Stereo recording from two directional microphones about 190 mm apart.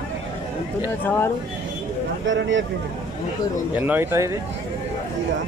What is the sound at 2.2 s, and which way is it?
Speech, 80° right.